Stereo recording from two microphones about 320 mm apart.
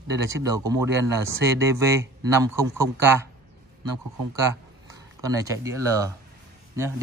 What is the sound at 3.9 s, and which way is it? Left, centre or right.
Speech, right.